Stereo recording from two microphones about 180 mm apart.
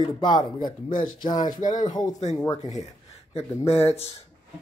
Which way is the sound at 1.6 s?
45° left (ahead or behind).